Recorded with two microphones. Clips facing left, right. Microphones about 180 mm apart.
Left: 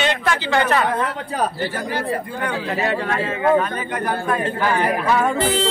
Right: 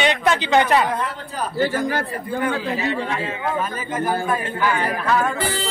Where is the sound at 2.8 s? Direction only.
55° left (ahead or behind).